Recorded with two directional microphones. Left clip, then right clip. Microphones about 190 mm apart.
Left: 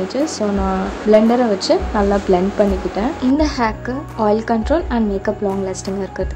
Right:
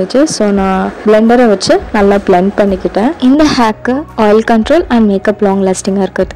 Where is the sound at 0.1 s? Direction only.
40° right (ahead or behind).